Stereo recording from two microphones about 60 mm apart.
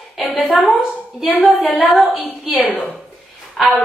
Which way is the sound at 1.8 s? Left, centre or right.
Centre.